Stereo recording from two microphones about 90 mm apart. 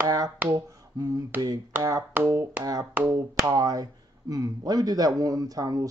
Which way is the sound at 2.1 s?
30° right (ahead or behind).